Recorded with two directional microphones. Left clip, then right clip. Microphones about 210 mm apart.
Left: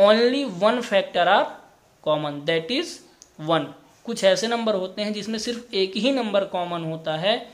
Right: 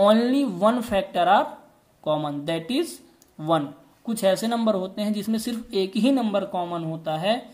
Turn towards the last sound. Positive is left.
turn(degrees=-20)  # may be behind; listen again after turning